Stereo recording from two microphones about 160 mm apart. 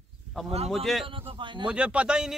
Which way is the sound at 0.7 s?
Centre (ahead or behind).